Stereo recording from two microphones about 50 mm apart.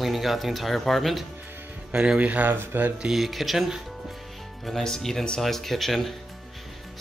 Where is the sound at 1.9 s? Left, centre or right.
Right.